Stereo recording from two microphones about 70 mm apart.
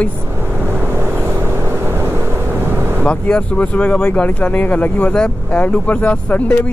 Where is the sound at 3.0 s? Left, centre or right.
Centre.